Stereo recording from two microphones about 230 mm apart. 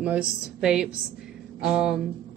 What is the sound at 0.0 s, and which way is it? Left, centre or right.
A woman's voice, centre.